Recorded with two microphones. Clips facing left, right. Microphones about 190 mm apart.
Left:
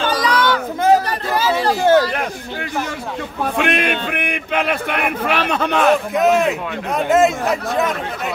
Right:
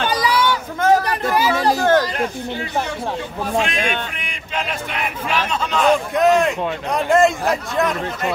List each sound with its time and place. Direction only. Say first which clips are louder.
0.1 s a sound: left 1 dB; 10° right (ahead or behind)
1.8 s chatter: left 5 dB; 10° left (ahead or behind)
3.5 s speech: left 1 dB; 60° left (ahead or behind)
6.1 s a man's voice: even; centre (ahead or behind)